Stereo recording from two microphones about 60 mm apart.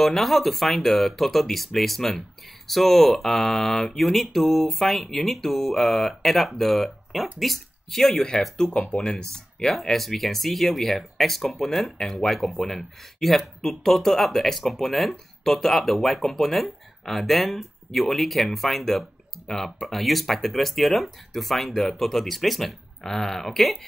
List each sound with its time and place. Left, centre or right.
0.0 s speech: centre